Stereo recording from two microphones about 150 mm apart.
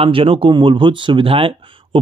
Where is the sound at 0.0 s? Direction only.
35° right (ahead or behind).